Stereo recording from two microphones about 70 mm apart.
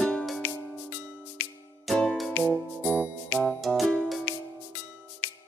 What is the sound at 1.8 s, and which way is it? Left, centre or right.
Music, centre.